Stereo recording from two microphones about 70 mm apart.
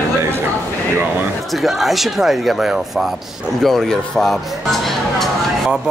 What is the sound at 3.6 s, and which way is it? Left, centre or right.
Speech, centre.